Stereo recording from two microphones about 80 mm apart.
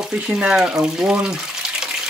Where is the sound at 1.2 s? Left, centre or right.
Centre.